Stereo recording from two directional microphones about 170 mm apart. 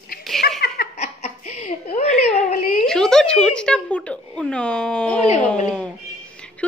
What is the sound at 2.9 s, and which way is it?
A woman's voice, 5° left (ahead or behind).